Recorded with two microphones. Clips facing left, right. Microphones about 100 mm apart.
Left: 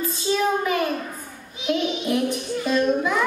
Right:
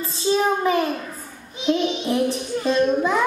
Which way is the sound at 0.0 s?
30° right (ahead or behind).